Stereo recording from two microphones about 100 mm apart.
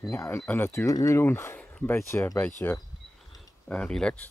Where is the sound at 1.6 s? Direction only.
15° left (ahead or behind).